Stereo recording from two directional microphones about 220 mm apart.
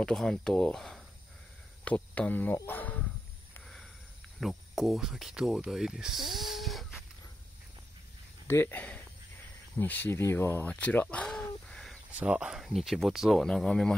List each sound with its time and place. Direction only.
0.0 s speech: centre (ahead or behind)
3.5 s sniff: centre (ahead or behind)
4.4 s speech: centre (ahead or behind)
8.5 s speech: 10° left (ahead or behind)
10.0 s speech: 10° left (ahead or behind)